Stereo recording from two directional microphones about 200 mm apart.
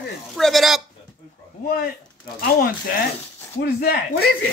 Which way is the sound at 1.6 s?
50° left (ahead or behind).